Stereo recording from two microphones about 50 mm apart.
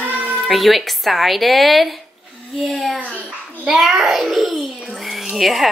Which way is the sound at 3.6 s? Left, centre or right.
Centre.